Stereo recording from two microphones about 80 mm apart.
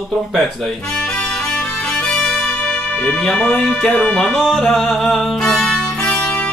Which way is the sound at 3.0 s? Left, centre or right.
Centre.